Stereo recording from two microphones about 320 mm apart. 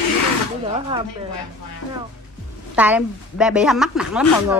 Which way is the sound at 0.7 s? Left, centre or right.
Centre.